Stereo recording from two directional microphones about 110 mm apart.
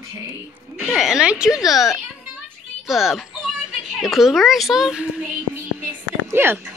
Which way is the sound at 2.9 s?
5° right (ahead or behind).